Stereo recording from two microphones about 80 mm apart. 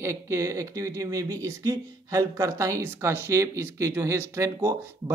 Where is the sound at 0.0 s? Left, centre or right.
Right.